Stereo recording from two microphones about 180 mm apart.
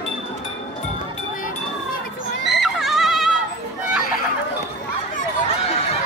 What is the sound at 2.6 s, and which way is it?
Neigh, centre (ahead or behind).